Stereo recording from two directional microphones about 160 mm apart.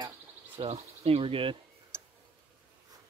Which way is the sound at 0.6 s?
40° right (ahead or behind).